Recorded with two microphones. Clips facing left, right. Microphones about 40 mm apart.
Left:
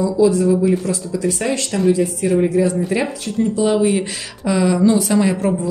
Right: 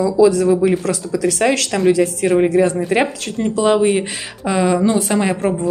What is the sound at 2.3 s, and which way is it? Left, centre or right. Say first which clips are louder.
Speech: right 2 dB; right.